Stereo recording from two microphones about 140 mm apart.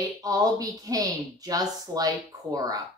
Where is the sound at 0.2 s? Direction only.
25° right (ahead or behind).